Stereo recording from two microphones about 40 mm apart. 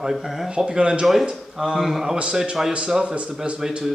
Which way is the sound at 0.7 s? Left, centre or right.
Right.